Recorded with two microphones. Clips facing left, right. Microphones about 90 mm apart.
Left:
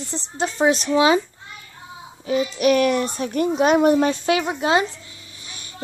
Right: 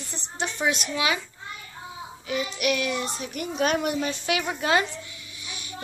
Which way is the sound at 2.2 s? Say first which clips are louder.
Left 8 dB; 35° left (ahead or behind).